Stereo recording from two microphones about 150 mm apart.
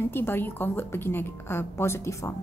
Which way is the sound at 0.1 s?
15° left (ahead or behind).